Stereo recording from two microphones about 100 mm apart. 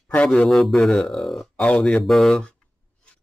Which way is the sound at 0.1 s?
10° left (ahead or behind).